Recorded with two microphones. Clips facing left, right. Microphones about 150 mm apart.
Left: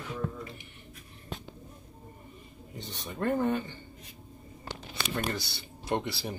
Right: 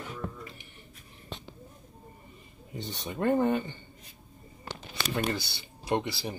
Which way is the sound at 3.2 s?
20° right (ahead or behind).